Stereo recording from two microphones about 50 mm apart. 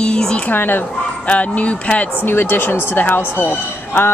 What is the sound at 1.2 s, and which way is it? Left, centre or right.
Speech, left.